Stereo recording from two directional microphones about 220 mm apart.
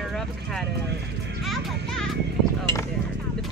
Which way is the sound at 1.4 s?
Centre (ahead or behind).